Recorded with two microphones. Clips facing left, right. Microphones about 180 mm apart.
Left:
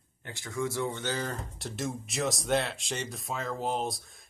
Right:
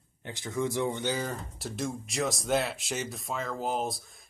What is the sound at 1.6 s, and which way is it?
Speech, centre (ahead or behind).